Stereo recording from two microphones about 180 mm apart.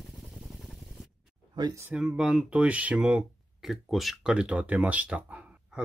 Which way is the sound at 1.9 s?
5° right (ahead or behind).